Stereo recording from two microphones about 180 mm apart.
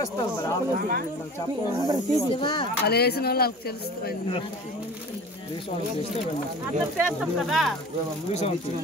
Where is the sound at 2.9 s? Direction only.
60° left (ahead or behind).